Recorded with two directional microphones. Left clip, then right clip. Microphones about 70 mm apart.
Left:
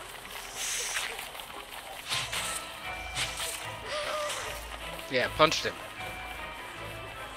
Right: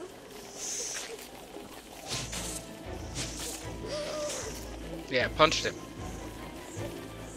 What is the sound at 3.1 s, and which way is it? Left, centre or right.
Music, right.